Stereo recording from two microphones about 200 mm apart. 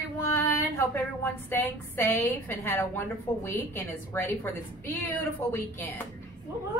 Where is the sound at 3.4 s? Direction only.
15° left (ahead or behind).